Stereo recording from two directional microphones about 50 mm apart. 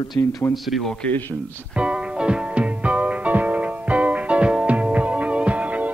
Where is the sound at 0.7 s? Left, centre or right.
Centre.